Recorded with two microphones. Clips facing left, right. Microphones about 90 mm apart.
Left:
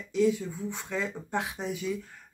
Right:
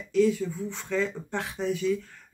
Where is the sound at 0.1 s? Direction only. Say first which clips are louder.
Right 3 dB; 15° left (ahead or behind).